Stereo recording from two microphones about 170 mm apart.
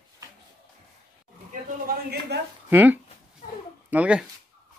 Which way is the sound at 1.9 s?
60° right (ahead or behind).